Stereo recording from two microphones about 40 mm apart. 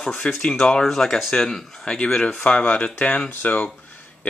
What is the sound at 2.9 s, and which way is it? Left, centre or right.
Speech, left.